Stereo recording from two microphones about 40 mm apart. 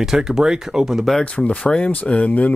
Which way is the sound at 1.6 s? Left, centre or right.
Left.